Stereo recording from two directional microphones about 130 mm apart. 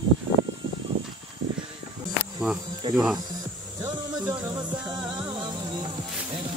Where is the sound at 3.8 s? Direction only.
30° right (ahead or behind).